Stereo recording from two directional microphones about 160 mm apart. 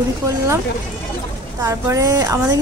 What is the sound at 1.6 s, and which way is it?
Speech, 20° right (ahead or behind).